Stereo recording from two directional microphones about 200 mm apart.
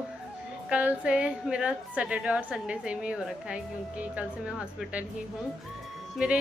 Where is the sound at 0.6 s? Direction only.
5° right (ahead or behind).